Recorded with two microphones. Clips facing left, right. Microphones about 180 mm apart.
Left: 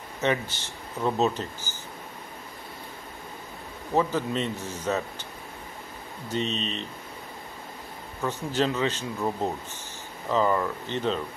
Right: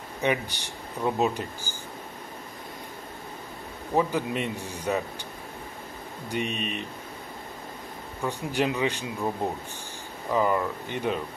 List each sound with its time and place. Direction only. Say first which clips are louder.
0.2 s speech: even; 15° right (ahead or behind)
3.9 s speech: even; 15° right (ahead or behind)
6.2 s speech: left 1 dB; 15° right (ahead or behind)
8.2 s speech: left 1 dB; 15° right (ahead or behind)
10.3 s speech: even; 10° right (ahead or behind)